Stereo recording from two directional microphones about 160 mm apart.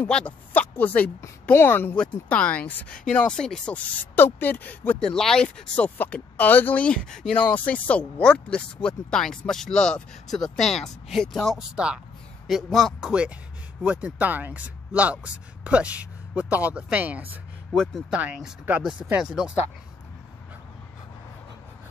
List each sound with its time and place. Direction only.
0.0 s a woman's voice: 10° left (ahead or behind)